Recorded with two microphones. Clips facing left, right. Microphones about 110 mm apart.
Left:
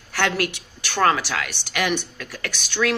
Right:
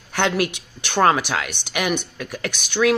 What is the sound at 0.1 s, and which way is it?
A woman's voice, 20° right (ahead or behind).